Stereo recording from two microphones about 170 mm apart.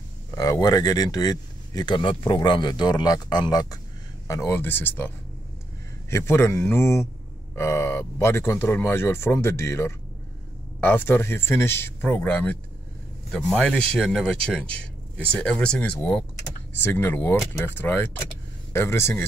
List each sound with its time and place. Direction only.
0.3 s speech: 20° left (ahead or behind)